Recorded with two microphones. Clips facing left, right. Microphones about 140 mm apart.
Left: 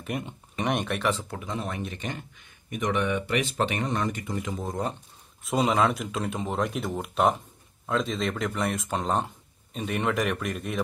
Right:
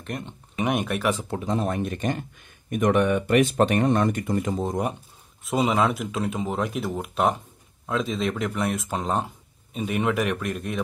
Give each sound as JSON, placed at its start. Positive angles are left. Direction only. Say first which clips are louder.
{"t": 0.0, "sound": "speech", "louder": "left 1 dB", "side_deg": 5}
{"t": 0.6, "sound": "speech", "louder": "right 3 dB", "side_deg": -5}
{"t": 1.3, "sound": "speech", "louder": "right 7 dB", "side_deg": -35}
{"t": 4.6, "sound": "speech", "louder": "right 5 dB", "side_deg": -20}
{"t": 5.4, "sound": "speech", "louder": "right 1 dB", "side_deg": 0}